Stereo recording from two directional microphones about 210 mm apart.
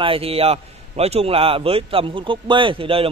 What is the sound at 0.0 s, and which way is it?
A man's voice, 25° right (ahead or behind).